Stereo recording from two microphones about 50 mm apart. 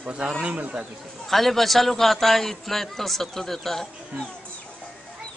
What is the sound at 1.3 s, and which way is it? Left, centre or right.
A man's voice, centre.